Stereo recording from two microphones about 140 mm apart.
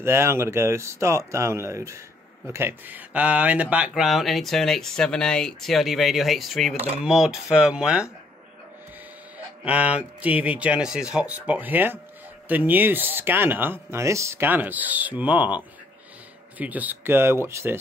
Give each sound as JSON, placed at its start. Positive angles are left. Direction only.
{"t": 0.0, "sound": "speech", "side_deg": -15}
{"t": 9.7, "sound": "speech", "side_deg": -10}